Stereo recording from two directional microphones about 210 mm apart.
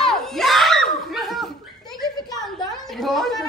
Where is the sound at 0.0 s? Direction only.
Centre (ahead or behind).